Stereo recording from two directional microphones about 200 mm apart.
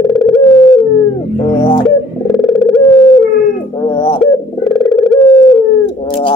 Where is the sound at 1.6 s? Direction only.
25° left (ahead or behind).